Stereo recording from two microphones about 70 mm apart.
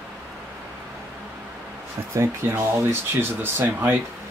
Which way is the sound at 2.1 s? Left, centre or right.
Right.